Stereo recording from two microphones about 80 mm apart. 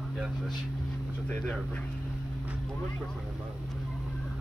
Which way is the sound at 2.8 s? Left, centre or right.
Centre.